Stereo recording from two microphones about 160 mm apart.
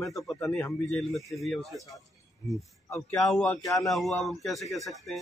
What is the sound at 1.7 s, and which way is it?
Speech, 20° left (ahead or behind).